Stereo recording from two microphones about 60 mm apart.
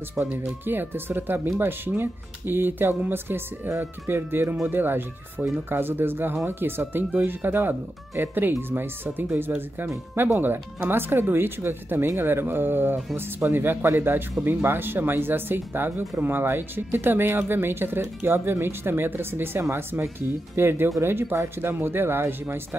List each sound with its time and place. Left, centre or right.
0.2 s speech: right